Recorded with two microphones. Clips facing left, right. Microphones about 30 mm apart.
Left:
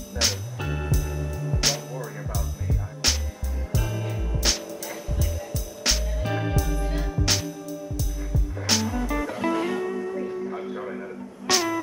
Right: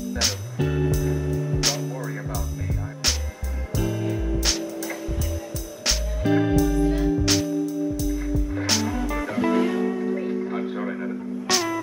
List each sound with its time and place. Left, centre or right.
0.1 s music: centre
5.9 s music: centre
10.8 s music: right
11.4 s music: centre